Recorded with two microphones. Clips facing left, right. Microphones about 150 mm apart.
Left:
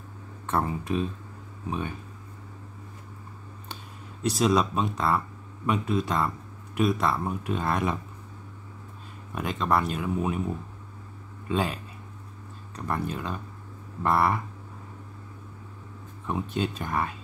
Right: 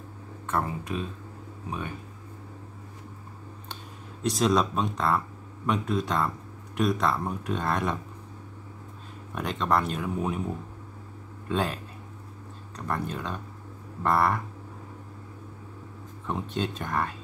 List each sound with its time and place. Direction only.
0.5 s speech: 25° left (ahead or behind)
4.2 s speech: centre (ahead or behind)
9.3 s speech: 5° left (ahead or behind)
11.4 s speech: 5° left (ahead or behind)
14.0 s frog: 5° left (ahead or behind)
16.3 s speech: 5° left (ahead or behind)